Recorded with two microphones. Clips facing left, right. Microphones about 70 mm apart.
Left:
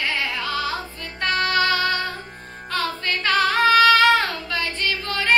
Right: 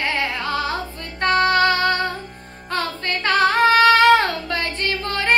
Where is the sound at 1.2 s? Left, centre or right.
Right.